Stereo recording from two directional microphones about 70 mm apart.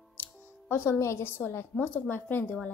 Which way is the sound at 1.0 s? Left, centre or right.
Left.